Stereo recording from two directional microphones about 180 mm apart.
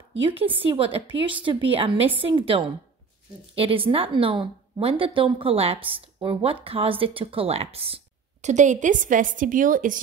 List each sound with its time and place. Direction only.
0.2 s a woman's voice: 30° right (ahead or behind); by 9.9 s 50° right (ahead or behind)